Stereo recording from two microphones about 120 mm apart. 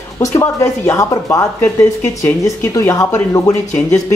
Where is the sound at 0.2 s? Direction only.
25° left (ahead or behind).